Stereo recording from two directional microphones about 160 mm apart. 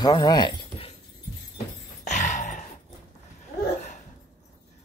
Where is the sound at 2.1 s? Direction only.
50° left (ahead or behind).